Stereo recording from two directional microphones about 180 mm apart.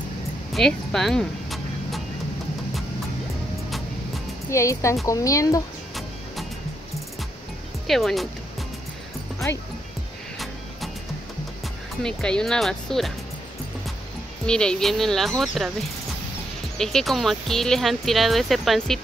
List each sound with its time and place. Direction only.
0.5 s a sound: centre (ahead or behind)
4.5 s speech: 15° left (ahead or behind)
7.8 s speech: centre (ahead or behind)
12.0 s speech: 5° left (ahead or behind)
14.4 s speech: 5° left (ahead or behind)